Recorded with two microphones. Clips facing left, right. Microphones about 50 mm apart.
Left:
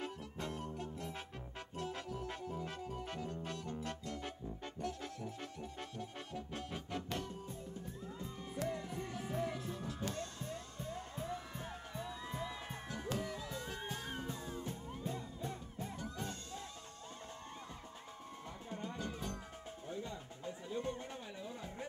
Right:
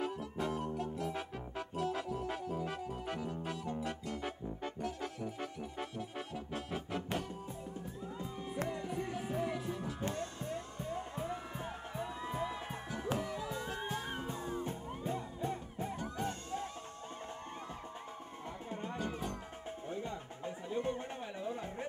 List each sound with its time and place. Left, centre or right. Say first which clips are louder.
0.0 s music: right 6 dB; centre; by 16.6 s right
18.7 s music: right 3 dB; right